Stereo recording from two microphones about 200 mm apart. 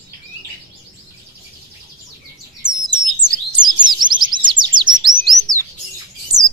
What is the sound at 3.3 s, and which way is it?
Bird, 20° right (ahead or behind).